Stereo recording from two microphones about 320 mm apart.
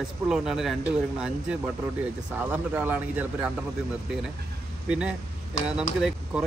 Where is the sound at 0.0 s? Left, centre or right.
Centre.